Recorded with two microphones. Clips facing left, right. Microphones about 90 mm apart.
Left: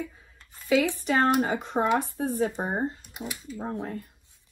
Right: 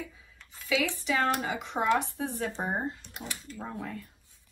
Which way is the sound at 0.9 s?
45° left (ahead or behind).